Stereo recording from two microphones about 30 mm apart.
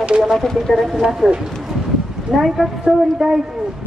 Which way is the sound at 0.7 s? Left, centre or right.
Centre.